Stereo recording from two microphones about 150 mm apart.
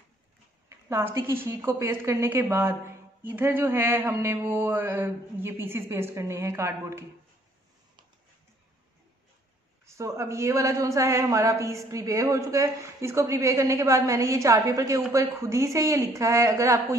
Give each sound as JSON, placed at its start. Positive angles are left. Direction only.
{"t": 0.7, "sound": "a woman's voice", "side_deg": -20}
{"t": 9.8, "sound": "a man's voice", "side_deg": -20}